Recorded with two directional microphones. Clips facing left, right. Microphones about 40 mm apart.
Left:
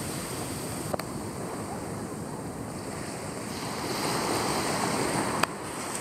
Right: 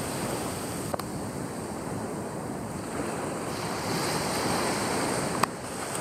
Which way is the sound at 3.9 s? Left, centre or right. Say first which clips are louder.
Left 1 dB; centre.